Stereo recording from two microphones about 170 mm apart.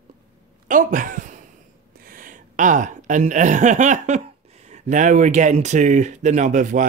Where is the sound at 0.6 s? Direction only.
50° right (ahead or behind).